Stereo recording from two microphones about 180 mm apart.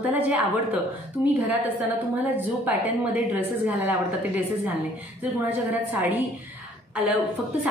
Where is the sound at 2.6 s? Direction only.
10° right (ahead or behind).